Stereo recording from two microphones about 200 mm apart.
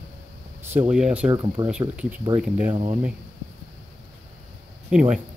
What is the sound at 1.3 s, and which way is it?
Speech, 20° right (ahead or behind).